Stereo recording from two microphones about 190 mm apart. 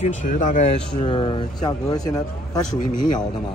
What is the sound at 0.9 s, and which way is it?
Speech, 25° left (ahead or behind).